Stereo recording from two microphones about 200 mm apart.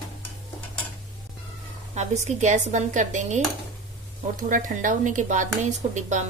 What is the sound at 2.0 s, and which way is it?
Speech, 35° right (ahead or behind).